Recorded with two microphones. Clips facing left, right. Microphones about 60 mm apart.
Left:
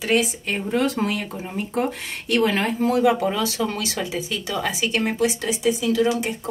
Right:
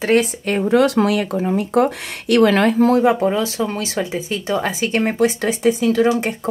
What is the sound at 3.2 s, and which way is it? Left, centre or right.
Speech, right.